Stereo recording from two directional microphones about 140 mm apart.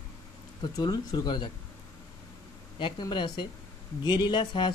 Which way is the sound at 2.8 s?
35° left (ahead or behind).